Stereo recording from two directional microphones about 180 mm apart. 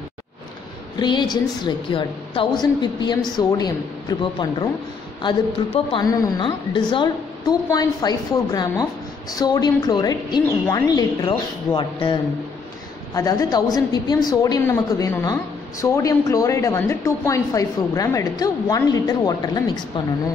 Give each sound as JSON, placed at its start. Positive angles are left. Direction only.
{"t": 0.9, "sound": "a woman's voice", "side_deg": 25}
{"t": 5.9, "sound": "a woman's voice", "side_deg": 25}